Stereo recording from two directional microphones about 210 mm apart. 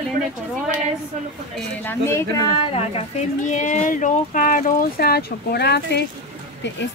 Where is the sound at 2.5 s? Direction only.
30° left (ahead or behind); by 6.8 s 60° left (ahead or behind).